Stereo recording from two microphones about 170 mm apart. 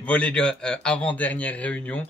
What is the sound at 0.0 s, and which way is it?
Speech, 10° left (ahead or behind).